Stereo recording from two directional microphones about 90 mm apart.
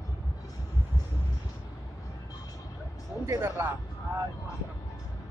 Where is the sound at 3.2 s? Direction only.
30° right (ahead or behind).